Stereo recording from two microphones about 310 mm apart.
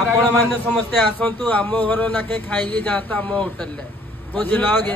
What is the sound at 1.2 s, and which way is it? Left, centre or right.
A man's voice, centre.